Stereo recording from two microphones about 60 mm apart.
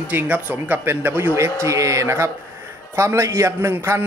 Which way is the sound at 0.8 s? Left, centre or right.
Right.